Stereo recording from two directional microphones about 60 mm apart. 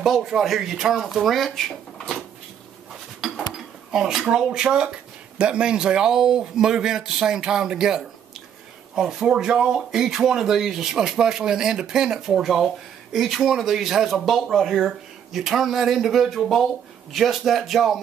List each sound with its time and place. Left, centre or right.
0.0 s speech: centre
3.2 s dishes: centre
4.3 s speech: centre